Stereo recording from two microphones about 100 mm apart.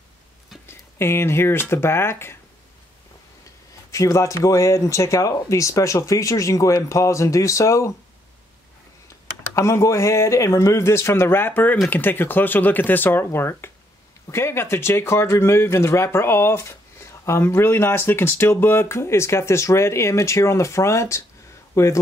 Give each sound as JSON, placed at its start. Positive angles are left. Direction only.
{"t": 0.7, "sound": "speech", "side_deg": 25}
{"t": 3.9, "sound": "speech", "side_deg": 35}
{"t": 9.6, "sound": "speech", "side_deg": 30}